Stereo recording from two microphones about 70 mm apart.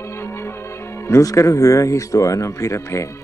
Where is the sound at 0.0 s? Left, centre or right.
Left.